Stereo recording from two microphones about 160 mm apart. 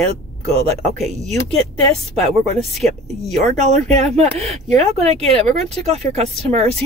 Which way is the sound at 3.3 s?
45° right (ahead or behind).